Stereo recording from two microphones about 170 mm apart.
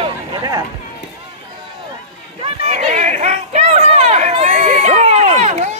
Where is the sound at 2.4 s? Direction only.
40° right (ahead or behind).